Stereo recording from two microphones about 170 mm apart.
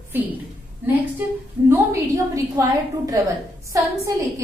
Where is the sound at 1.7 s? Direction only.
15° right (ahead or behind).